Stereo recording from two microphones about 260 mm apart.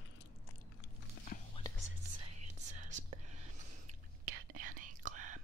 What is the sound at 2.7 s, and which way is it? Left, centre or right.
Whispering, right.